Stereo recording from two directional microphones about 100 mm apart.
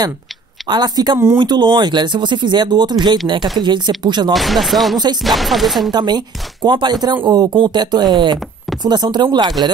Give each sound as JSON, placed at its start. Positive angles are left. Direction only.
{"t": 0.7, "sound": "speech", "side_deg": -45}
{"t": 4.3, "sound": "speech", "side_deg": 0}
{"t": 4.9, "sound": "speech", "side_deg": -45}
{"t": 5.2, "sound": "speech", "side_deg": 0}
{"t": 5.9, "sound": "speech", "side_deg": -45}